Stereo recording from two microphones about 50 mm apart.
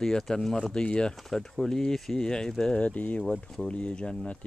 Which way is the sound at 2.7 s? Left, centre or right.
Left.